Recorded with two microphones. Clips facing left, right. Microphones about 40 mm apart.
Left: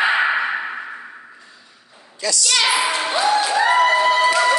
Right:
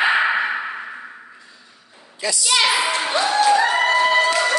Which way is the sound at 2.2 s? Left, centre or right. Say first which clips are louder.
Even; centre.